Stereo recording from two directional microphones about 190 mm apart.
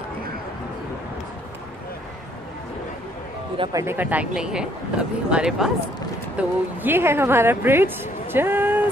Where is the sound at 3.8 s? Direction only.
10° right (ahead or behind).